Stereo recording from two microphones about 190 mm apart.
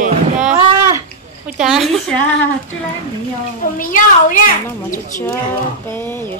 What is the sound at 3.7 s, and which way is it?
Speech, 45° left (ahead or behind).